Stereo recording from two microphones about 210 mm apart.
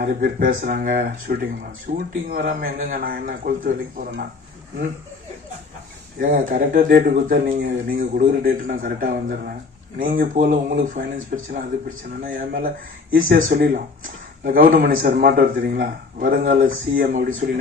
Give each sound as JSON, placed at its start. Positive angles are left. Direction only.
{"t": 0.0, "sound": "speech", "side_deg": -45}
{"t": 6.1, "sound": "speech", "side_deg": -40}